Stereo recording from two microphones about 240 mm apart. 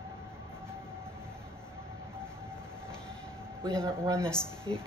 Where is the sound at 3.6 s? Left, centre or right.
Centre.